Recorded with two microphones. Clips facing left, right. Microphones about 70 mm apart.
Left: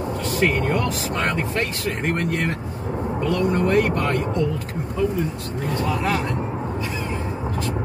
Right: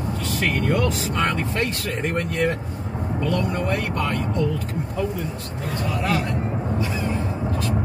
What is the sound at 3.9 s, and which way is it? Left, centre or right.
Speech, left.